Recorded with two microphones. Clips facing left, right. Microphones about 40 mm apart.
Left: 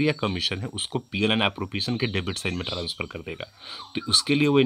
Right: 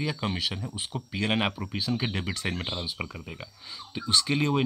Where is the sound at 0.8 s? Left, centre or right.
Left.